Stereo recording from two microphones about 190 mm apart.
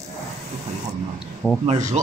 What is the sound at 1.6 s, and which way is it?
Speech, 35° right (ahead or behind).